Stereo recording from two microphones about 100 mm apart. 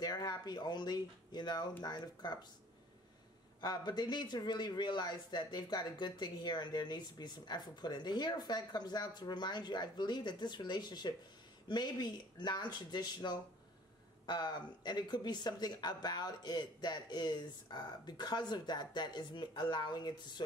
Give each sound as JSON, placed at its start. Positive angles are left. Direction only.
{"t": 0.0, "sound": "speech", "side_deg": 40}
{"t": 3.6, "sound": "speech", "side_deg": 45}